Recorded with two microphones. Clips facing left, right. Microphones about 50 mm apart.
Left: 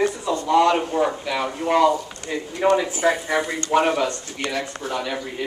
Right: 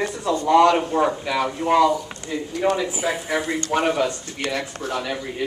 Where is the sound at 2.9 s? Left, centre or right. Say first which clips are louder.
Left 3 dB; centre.